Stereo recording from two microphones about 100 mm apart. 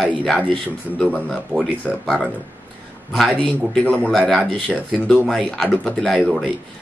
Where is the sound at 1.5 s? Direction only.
15° right (ahead or behind).